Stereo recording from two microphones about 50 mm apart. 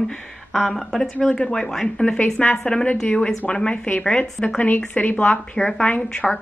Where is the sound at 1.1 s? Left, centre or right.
Left.